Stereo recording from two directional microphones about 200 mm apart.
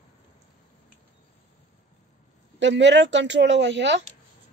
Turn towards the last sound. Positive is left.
turn(degrees=-60)  # may be behind; listen again after turning